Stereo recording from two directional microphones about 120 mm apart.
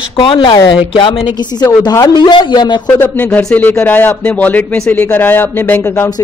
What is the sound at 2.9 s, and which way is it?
Speech, 15° left (ahead or behind).